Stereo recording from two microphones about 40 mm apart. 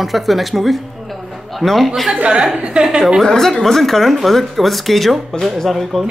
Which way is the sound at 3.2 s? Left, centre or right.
Centre.